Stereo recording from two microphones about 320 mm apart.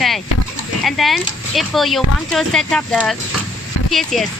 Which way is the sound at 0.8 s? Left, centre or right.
Centre.